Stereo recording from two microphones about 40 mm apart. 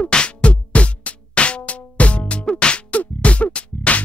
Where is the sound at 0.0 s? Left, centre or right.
Left.